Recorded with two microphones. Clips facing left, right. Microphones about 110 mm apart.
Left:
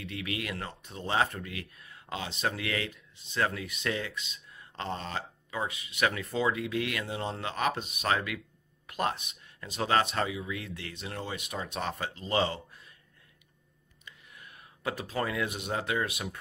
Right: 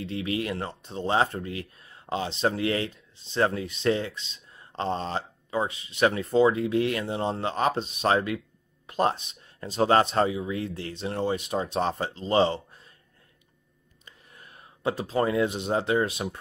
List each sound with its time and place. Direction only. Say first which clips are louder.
0.0 s speech: right 7 dB; 30° right (ahead or behind)
14.0 s speech: even; 35° right (ahead or behind)